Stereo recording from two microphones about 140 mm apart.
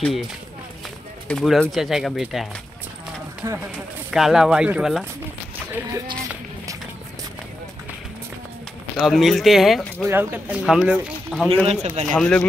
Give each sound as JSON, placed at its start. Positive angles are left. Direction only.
{"t": 0.0, "sound": "speech", "side_deg": 0}
{"t": 1.3, "sound": "speech", "side_deg": 5}
{"t": 3.5, "sound": "speech", "side_deg": -5}
{"t": 8.9, "sound": "speech", "side_deg": 0}
{"t": 10.0, "sound": "speech", "side_deg": -15}
{"t": 10.7, "sound": "speech", "side_deg": -5}
{"t": 11.6, "sound": "a man's voice", "side_deg": -45}
{"t": 12.1, "sound": "speech", "side_deg": 5}